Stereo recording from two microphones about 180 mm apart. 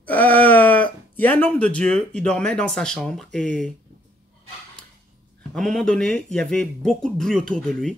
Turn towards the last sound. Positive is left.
turn(degrees=5)  # may be behind; listen again after turning